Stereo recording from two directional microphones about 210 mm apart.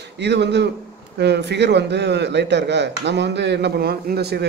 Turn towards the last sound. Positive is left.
turn(degrees=-50)  # may be behind; listen again after turning